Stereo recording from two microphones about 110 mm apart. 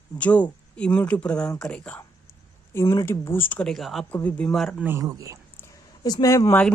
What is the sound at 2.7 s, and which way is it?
Speech, 25° left (ahead or behind).